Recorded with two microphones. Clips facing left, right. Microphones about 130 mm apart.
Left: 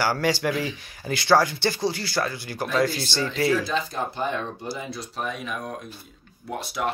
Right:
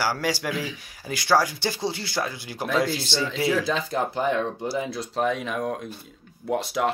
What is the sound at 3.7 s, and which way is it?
Speech, 90° right.